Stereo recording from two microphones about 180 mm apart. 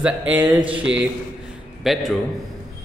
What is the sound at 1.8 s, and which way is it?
Speech, centre (ahead or behind).